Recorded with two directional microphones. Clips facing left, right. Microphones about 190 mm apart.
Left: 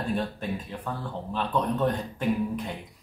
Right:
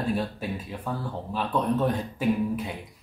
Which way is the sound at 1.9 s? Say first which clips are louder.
Right 1 dB; 5° right (ahead or behind).